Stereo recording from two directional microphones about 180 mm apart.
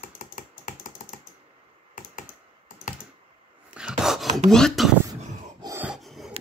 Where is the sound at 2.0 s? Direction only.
45° left (ahead or behind).